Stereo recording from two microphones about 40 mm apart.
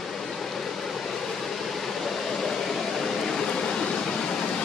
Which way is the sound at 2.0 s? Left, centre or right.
Centre.